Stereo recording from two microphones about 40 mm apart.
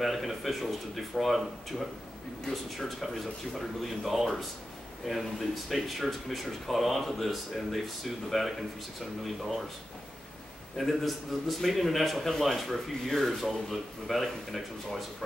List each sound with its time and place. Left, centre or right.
0.0 s a man's voice: centre
10.8 s a man's voice: centre